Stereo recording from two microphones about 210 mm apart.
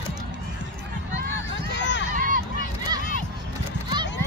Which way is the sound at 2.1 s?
40° right (ahead or behind).